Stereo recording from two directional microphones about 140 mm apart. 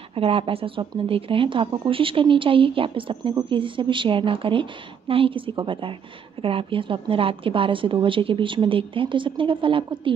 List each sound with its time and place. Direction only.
0.1 s speech: 45° right (ahead or behind)